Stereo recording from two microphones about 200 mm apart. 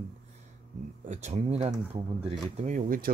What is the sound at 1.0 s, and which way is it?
Speech, 35° right (ahead or behind).